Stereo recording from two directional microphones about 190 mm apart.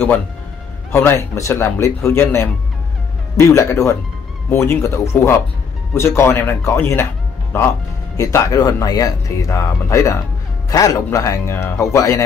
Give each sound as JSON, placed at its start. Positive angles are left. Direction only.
{"t": 0.9, "sound": "speech", "side_deg": 15}